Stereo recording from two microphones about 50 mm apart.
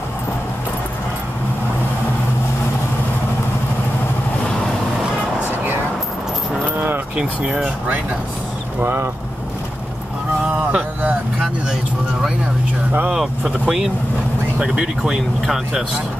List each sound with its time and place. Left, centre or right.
7.2 s speech: right
8.8 s speech: right
10.5 s a sound: right
13.7 s speech: centre